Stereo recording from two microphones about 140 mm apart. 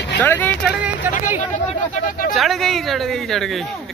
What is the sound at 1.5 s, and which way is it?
Speech, 60° left (ahead or behind).